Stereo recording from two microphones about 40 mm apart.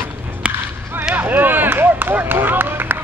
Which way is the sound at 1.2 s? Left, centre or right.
Right.